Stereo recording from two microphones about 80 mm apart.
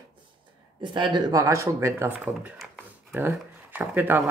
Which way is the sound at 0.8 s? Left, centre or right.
Right.